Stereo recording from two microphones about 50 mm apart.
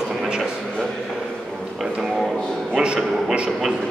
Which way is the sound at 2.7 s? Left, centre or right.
Centre.